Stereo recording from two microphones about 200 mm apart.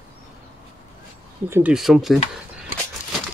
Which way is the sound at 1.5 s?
5° right (ahead or behind).